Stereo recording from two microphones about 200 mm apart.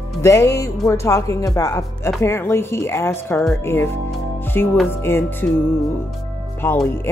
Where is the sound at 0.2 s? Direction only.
15° left (ahead or behind).